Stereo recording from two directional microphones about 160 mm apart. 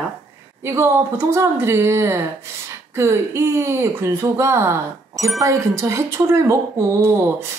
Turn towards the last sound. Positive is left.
turn(degrees=-15)  # may be behind; listen again after turning